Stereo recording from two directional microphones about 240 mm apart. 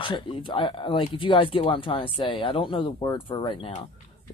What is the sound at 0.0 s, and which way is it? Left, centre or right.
Speech, left.